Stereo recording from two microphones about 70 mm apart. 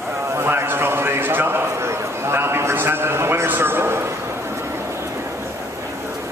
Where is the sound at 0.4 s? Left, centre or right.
Right.